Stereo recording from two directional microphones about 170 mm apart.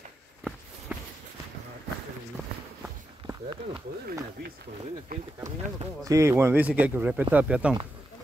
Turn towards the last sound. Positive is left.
turn(degrees=-5)  # may be behind; listen again after turning